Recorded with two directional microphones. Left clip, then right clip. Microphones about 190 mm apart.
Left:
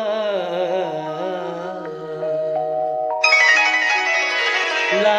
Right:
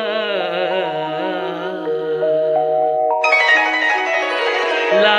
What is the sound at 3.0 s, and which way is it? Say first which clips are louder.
Music: left 2 dB; 25° left (ahead or behind).